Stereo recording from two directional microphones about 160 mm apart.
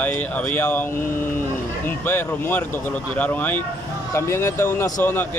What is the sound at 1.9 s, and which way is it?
Speech, 15° left (ahead or behind).